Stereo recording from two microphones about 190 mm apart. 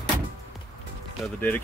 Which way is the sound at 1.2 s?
10° left (ahead or behind).